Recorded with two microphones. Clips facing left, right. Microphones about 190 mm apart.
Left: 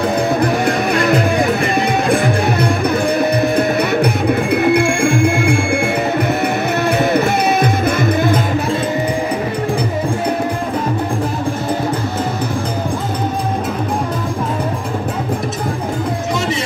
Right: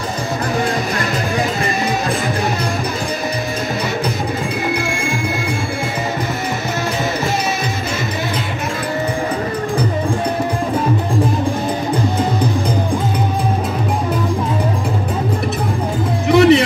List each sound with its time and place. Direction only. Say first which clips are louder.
1.8 s music: left 4 dB; 60° left (ahead or behind)
4.7 s music: left 7 dB; 60° left (ahead or behind)
16.3 s music: right 14 dB; 65° right (ahead or behind)